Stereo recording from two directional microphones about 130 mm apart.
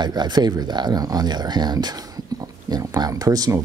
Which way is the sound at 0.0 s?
35° right (ahead or behind).